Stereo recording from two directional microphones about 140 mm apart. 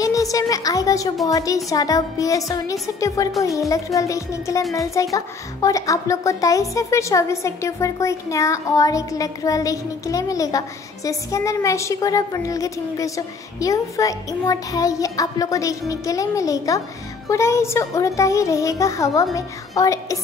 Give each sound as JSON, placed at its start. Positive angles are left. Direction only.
{"t": 0.0, "sound": "a woman's voice", "side_deg": 25}